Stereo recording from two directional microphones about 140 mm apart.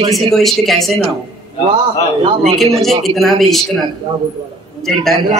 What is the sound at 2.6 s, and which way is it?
Speech, centre (ahead or behind).